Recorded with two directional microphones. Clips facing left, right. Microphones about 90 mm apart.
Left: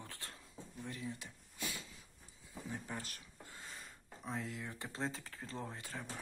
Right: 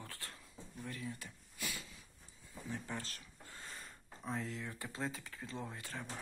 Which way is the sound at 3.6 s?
Centre (ahead or behind).